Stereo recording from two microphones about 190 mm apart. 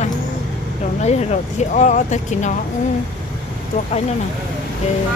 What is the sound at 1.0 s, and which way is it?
Speech, 35° left (ahead or behind).